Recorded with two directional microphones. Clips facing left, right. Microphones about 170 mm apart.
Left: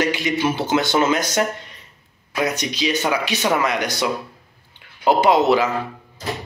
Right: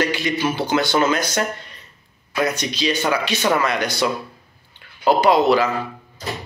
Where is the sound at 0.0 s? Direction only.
15° left (ahead or behind).